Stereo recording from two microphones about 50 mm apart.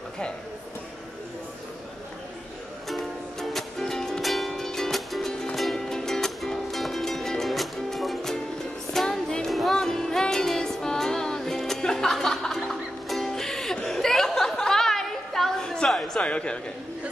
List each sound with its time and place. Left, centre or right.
2.9 s music: centre
9.5 s music: centre
16.2 s a sound: left